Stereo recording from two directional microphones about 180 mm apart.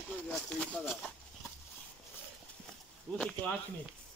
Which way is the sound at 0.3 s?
5° left (ahead or behind).